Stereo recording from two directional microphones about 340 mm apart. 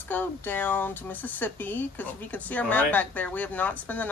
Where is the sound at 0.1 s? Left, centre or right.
Centre.